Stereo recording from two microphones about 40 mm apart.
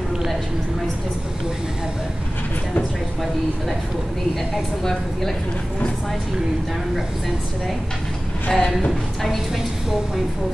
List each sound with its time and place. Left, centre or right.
8.5 s speech: centre